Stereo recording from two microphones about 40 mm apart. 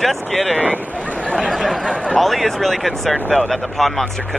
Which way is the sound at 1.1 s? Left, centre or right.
Left.